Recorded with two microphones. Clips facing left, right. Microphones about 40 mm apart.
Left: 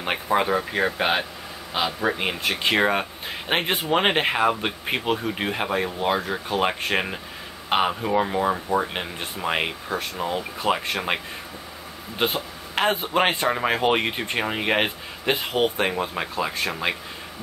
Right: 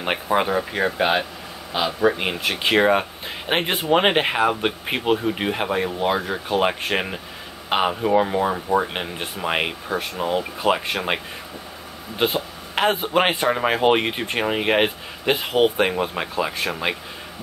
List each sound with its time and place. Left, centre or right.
0.0 s speech: centre
0.5 s speech: centre
12.2 s speech: centre